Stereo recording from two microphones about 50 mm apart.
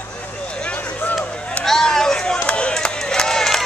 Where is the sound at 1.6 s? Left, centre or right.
Centre.